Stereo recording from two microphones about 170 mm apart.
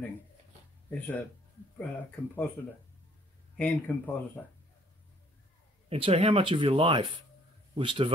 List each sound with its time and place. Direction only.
0.8 s speech: 10° left (ahead or behind)
3.5 s speech: 10° left (ahead or behind)
5.9 s a man's voice: 35° right (ahead or behind)